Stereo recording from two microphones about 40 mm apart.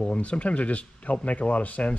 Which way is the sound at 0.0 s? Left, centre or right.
Left.